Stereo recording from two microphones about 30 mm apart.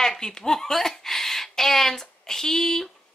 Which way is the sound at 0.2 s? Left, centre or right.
Centre.